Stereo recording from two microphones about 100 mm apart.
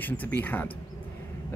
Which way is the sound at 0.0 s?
20° left (ahead or behind).